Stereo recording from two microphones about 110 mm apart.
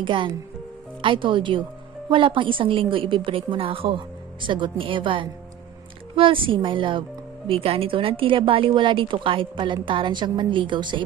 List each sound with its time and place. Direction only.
0.0 s speech: 50° right (ahead or behind)